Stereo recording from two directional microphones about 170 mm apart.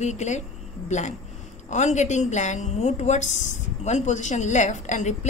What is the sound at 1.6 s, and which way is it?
A woman's voice, 45° left (ahead or behind).